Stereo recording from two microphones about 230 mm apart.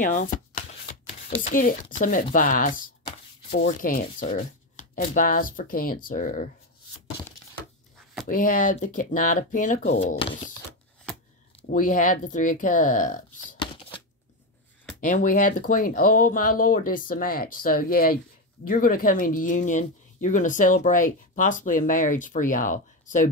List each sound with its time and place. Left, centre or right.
0.0 s speech: left
0.3 s shuffling cards: left
2.3 s speech: left
8.3 s speech: left
11.6 s speech: left
13.6 s shuffling cards: left
15.0 s speech: left